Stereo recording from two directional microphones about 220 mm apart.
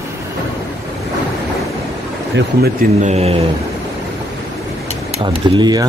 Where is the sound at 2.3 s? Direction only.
45° right (ahead or behind); by 3.5 s 30° right (ahead or behind).